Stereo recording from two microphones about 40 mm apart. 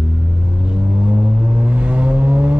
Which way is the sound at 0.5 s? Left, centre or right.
Right.